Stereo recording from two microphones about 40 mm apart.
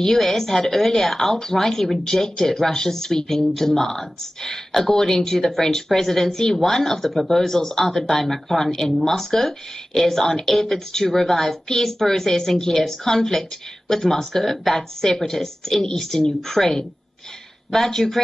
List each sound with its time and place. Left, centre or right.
0.0 s a woman's voice: centre